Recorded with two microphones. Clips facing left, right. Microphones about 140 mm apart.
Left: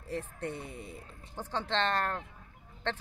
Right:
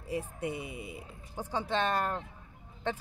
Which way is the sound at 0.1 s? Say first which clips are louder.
Right 2 dB; 10° right (ahead or behind).